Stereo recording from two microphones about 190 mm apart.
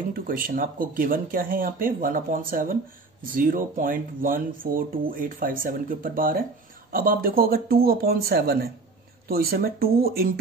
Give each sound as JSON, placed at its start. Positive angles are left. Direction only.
{"t": 0.1, "sound": "speech", "side_deg": -50}